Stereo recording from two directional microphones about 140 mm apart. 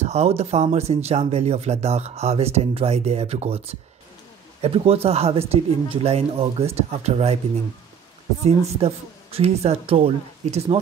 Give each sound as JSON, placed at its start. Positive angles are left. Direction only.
{"t": 0.0, "sound": "speech", "side_deg": -50}
{"t": 8.5, "sound": "speech", "side_deg": -45}